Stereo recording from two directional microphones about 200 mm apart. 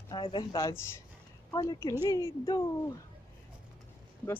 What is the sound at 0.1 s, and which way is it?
Speech, 25° left (ahead or behind).